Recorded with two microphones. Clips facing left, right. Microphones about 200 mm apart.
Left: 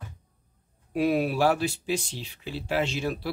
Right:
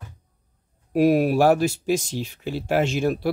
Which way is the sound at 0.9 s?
40° right (ahead or behind).